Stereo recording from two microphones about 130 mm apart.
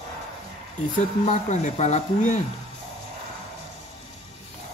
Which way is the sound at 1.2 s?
70° left (ahead or behind).